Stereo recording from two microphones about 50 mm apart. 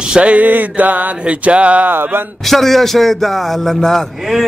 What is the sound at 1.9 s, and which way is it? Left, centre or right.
Speech, right.